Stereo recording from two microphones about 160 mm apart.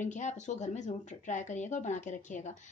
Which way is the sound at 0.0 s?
50° left (ahead or behind).